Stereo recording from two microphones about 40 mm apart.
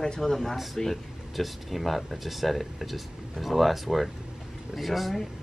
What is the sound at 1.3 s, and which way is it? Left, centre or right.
Speech, centre.